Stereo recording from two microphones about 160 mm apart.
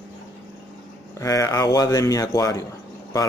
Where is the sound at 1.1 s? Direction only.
20° left (ahead or behind).